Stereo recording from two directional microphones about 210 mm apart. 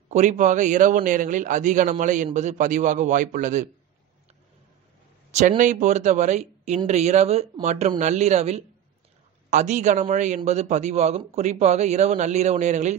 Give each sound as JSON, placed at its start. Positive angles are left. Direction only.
{"t": 0.1, "sound": "a man's voice", "side_deg": -35}
{"t": 5.3, "sound": "a man's voice", "side_deg": -35}